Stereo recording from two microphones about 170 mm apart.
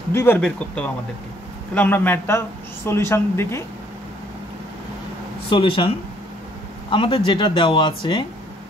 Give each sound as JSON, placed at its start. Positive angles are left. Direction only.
{"t": 0.1, "sound": "speech", "side_deg": 15}
{"t": 5.5, "sound": "speech", "side_deg": 30}
{"t": 6.9, "sound": "speech", "side_deg": 30}